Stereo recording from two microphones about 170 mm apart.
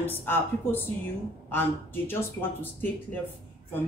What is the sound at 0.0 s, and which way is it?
Speech, 10° left (ahead or behind).